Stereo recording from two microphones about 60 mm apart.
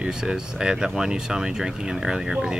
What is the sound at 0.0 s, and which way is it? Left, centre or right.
Speech, centre.